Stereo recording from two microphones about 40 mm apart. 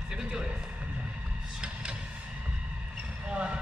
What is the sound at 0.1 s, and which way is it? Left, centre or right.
Horse, centre.